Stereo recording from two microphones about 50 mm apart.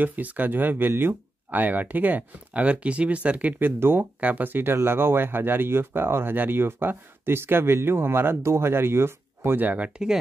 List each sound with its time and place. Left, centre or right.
0.0 s speech: right
3.5 s speech: right
4.0 s speech: right
8.4 s speech: right
9.6 s speech: right